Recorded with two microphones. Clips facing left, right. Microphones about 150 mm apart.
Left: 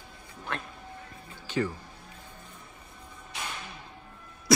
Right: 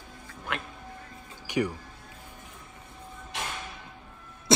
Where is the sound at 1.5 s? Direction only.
15° right (ahead or behind).